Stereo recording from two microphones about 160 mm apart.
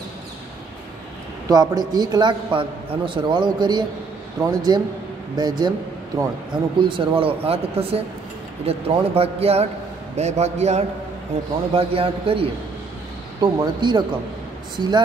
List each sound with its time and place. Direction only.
1.5 s a man's voice: 25° right (ahead or behind)